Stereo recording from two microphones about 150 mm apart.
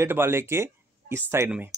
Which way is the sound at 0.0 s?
15° right (ahead or behind).